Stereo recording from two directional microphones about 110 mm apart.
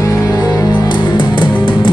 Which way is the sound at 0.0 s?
35° left (ahead or behind).